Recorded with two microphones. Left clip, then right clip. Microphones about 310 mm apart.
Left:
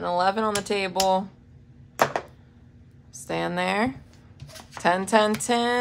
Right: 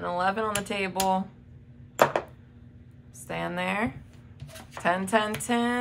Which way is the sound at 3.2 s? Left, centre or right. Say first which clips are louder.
Left 4 dB; left.